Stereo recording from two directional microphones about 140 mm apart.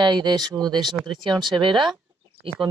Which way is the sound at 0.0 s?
30° right (ahead or behind).